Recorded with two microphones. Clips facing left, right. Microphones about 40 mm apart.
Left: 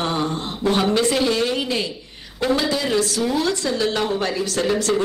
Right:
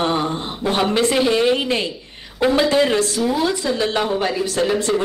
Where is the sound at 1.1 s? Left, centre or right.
Centre.